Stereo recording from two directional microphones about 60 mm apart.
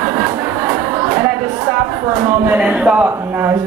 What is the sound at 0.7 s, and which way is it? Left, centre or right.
Chatter, right.